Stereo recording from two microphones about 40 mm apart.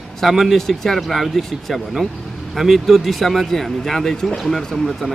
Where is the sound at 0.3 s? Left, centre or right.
Centre.